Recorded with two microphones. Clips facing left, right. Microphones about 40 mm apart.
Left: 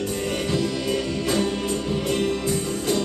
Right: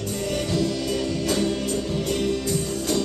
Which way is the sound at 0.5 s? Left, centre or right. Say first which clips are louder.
Left 1 dB; centre.